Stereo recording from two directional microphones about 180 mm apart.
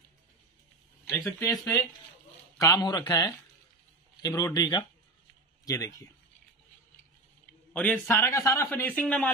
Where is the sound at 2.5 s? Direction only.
20° left (ahead or behind).